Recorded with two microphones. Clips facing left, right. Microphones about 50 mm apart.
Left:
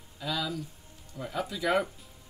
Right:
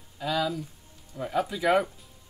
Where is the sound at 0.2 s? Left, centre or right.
Centre.